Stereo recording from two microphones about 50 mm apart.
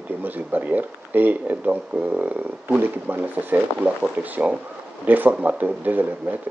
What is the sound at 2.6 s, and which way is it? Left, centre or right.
Speech, right.